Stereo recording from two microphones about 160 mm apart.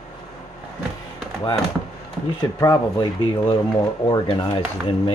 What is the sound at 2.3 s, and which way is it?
Speech, 20° left (ahead or behind).